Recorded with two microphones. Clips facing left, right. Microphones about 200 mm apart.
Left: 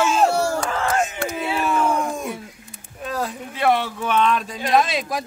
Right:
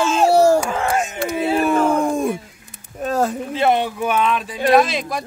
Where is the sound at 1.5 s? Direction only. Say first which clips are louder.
Right 5 dB; 40° right (ahead or behind).